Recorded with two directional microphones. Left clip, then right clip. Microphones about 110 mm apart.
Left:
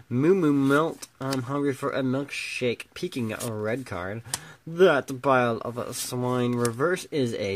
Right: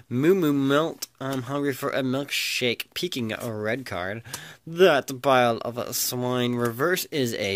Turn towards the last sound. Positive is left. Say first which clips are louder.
# right 1 dB
turn(degrees=-5)  # may be behind; listen again after turning